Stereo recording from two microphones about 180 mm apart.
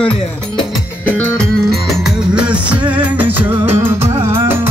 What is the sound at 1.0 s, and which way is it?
Music, 5° left (ahead or behind).